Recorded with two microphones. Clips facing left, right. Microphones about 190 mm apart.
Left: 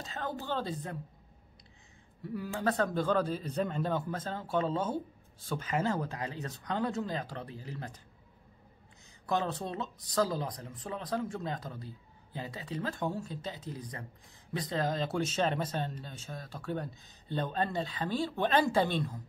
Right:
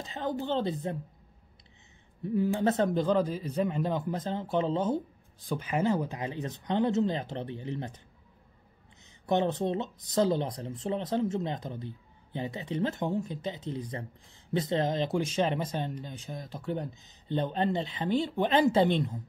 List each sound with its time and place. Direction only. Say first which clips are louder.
0.0 s a man's voice: right 5 dB; 20° right (ahead or behind)
2.2 s a man's voice: right 6 dB; 25° right (ahead or behind)
9.2 s a man's voice: right 5 dB; 25° right (ahead or behind)